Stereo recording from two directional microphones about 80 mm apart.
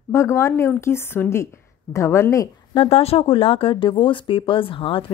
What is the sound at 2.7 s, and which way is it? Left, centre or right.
Speech, left.